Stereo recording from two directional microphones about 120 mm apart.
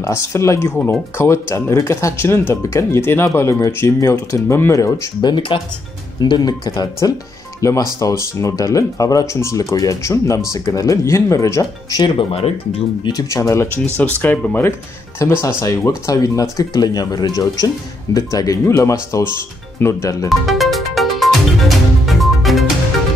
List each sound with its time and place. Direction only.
0.0 s speech: 25° left (ahead or behind)
5.2 s speech: 40° left (ahead or behind); by 12.0 s 25° left (ahead or behind)
12.0 s speech: 50° left (ahead or behind)
13.0 s speech: 30° left (ahead or behind)
13.9 s speech: 15° left (ahead or behind)
20.2 s music: centre (ahead or behind)